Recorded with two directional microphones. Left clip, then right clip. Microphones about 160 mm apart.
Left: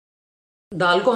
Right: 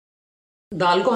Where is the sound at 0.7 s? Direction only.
20° left (ahead or behind).